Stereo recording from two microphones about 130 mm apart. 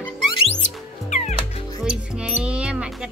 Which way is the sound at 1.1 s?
55° left (ahead or behind).